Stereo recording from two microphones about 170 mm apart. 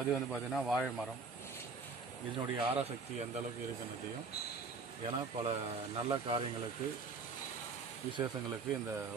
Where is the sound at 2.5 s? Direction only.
35° right (ahead or behind).